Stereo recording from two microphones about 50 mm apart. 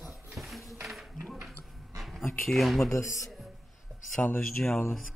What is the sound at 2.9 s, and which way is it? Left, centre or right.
Speech, left.